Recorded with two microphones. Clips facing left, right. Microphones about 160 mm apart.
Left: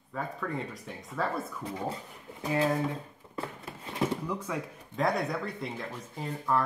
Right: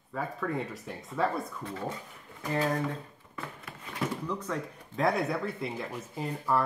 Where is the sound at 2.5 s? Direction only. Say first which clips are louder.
Left 2 dB; 5° left (ahead or behind).